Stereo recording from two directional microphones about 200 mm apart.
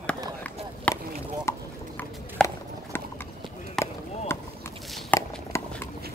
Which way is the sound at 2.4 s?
5° left (ahead or behind).